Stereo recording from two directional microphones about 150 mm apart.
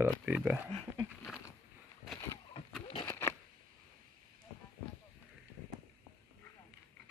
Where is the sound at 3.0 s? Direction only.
15° left (ahead or behind).